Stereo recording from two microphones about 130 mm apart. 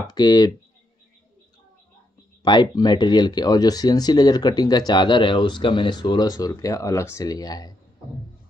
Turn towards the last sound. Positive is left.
turn(degrees=30)  # may be behind; listen again after turning